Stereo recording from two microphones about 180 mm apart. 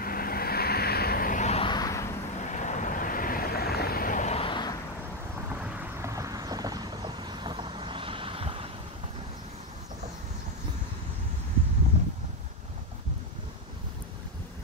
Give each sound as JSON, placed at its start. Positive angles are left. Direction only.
{"t": 0.0, "sound": "vehicle", "side_deg": 55}
{"t": 2.3, "sound": "vehicle", "side_deg": 45}
{"t": 5.9, "sound": "vehicle", "side_deg": -15}